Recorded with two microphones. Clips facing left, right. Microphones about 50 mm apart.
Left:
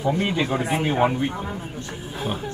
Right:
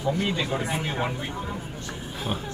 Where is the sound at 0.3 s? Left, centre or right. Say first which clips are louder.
Left 4 dB; centre.